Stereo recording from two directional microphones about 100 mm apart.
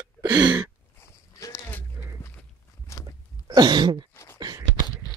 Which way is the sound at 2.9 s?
30° left (ahead or behind).